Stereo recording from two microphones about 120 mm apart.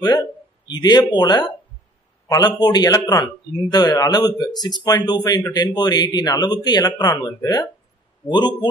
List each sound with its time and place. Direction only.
0.0 s a man's voice: 35° left (ahead or behind)